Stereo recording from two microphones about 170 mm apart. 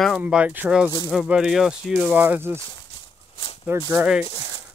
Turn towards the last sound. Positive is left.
turn(degrees=-15)  # may be behind; listen again after turning